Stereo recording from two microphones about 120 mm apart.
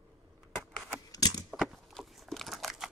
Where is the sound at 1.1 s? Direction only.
30° left (ahead or behind).